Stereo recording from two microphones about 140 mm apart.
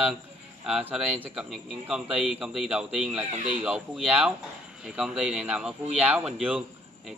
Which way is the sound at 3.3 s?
50° right (ahead or behind).